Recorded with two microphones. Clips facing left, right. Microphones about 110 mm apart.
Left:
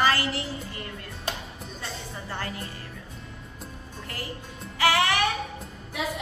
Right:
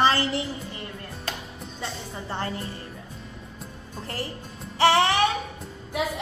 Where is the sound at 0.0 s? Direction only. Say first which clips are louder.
Right 2 dB; 25° right (ahead or behind).